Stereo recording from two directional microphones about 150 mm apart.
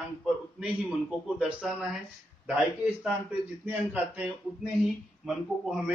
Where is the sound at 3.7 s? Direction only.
10° right (ahead or behind).